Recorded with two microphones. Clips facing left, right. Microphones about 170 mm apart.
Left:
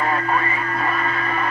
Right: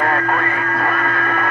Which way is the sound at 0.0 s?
55° right (ahead or behind).